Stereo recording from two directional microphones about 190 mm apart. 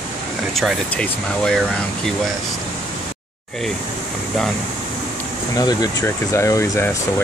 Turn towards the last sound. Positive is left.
turn(degrees=15)  # may be behind; listen again after turning